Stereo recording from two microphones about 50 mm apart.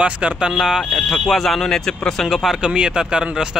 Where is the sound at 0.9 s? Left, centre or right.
Centre.